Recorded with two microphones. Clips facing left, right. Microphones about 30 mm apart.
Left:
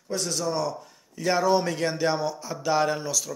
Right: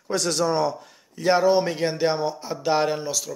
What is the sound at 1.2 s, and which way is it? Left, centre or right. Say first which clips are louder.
A man's voice: right 4 dB; right.